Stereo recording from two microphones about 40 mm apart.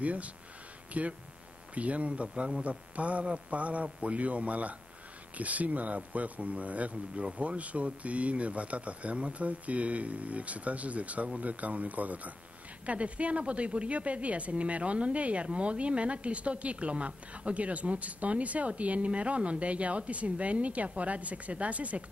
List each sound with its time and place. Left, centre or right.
0.0 s a woman's voice: right